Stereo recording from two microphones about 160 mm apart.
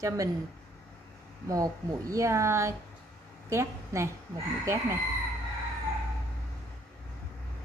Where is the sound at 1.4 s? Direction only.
20° right (ahead or behind).